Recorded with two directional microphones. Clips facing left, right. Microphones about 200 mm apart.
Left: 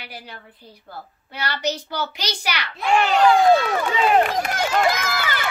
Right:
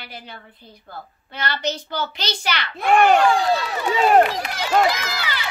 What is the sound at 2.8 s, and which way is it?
Speech, 55° right (ahead or behind).